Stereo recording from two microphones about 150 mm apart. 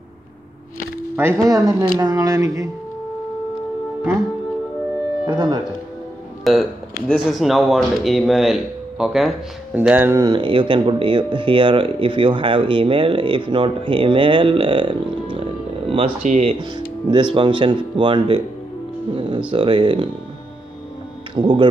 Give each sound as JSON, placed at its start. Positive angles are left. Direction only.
{"t": 1.1, "sound": "speech", "side_deg": -15}
{"t": 5.2, "sound": "speech", "side_deg": -25}
{"t": 6.4, "sound": "speech", "side_deg": 0}
{"t": 10.2, "sound": "speech", "side_deg": -35}
{"t": 16.2, "sound": "speech", "side_deg": -55}
{"t": 16.5, "sound": "speech", "side_deg": -30}
{"t": 19.5, "sound": "speech", "side_deg": -35}
{"t": 21.4, "sound": "speech", "side_deg": -35}